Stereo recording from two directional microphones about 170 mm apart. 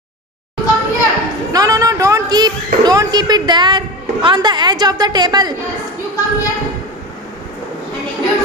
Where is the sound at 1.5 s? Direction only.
20° right (ahead or behind).